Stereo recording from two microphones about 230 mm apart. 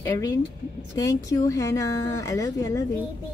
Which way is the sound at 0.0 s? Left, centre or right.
Centre.